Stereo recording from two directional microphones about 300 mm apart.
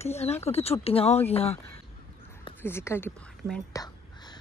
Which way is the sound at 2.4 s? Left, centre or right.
Centre.